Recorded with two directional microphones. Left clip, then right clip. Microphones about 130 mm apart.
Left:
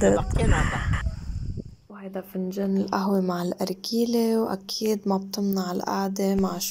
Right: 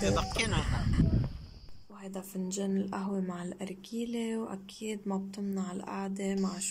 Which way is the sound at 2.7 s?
25° left (ahead or behind).